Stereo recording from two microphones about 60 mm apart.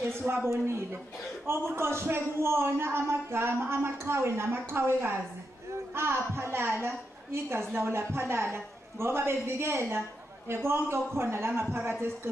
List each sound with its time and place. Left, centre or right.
0.2 s a woman's voice: right
1.7 s a woman's voice: right